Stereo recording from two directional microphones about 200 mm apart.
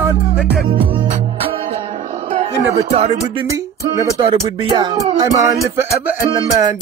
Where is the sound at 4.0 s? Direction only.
20° right (ahead or behind).